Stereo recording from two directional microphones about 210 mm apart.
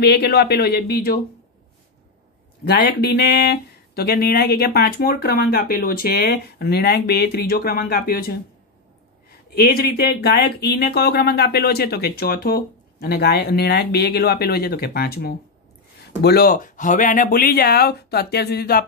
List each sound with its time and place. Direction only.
0.0 s speech: 50° left (ahead or behind)
2.8 s speech: 50° left (ahead or behind)
9.6 s speech: 50° left (ahead or behind)